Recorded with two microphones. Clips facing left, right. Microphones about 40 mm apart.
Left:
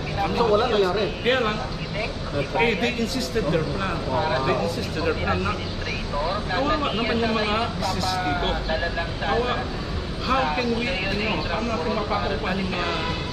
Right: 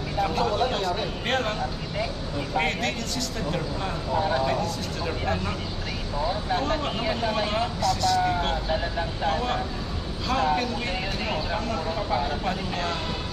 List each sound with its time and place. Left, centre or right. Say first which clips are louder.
0.2 s speech: left 4 dB; left
2.5 s speech: left 4 dB; centre
6.5 s speech: left 5 dB; left